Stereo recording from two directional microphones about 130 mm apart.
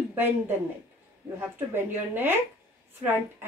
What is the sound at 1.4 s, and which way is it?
A woman's voice, 15° right (ahead or behind).